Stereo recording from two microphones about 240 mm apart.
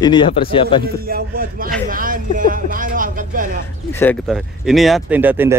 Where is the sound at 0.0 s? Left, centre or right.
Centre.